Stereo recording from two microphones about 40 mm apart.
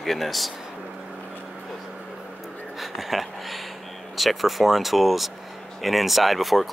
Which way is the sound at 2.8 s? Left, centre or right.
Centre.